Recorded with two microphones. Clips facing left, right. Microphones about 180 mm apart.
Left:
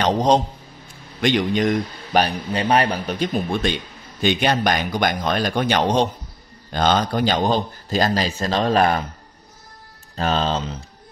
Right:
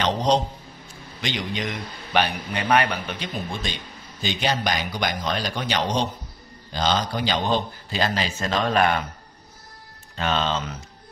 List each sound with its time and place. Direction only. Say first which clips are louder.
0.0 s a sound: left 4 dB; 45° left (ahead or behind)
1.2 s a man's voice: left 10 dB; 50° left (ahead or behind); by 9.0 s 35° left (ahead or behind)
10.1 s a man's voice: left 3 dB; 40° left (ahead or behind)